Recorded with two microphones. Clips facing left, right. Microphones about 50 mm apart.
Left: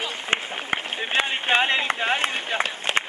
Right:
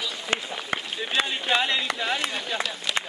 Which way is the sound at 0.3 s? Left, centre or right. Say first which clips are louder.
Left 3 dB; left.